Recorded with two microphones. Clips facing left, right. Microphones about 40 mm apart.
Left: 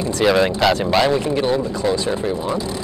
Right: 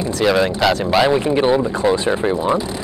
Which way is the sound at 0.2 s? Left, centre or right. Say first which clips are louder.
Even; centre.